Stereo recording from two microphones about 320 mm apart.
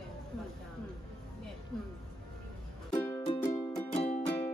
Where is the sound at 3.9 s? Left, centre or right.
Centre.